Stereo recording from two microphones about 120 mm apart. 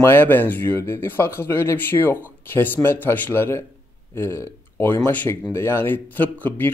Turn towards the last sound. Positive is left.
turn(degrees=15)  # may be behind; listen again after turning